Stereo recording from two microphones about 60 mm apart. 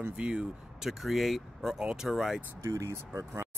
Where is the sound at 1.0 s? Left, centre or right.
Centre.